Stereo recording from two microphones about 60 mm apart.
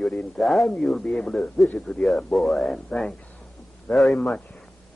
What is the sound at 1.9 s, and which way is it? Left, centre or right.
Speech, left.